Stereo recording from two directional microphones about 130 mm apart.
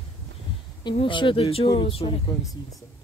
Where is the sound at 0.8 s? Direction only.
40° left (ahead or behind).